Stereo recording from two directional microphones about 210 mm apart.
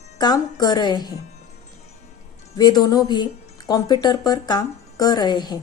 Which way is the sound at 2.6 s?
20° left (ahead or behind).